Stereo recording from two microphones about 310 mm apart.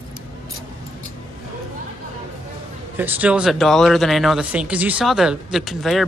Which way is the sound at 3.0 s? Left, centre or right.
Centre.